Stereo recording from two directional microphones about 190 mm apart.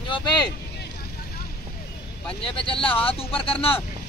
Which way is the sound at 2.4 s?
30° left (ahead or behind).